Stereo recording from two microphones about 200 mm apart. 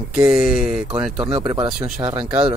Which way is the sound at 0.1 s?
5° right (ahead or behind).